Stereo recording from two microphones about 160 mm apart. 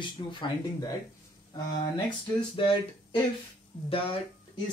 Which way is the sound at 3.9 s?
35° left (ahead or behind).